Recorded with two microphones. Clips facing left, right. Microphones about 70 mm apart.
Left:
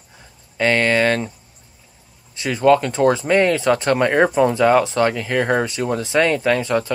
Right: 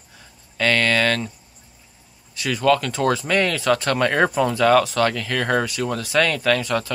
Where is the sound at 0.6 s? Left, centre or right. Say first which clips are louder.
Left 3 dB; left.